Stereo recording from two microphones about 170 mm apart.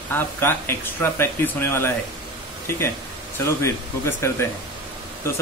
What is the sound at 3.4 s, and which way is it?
Speech, 15° left (ahead or behind).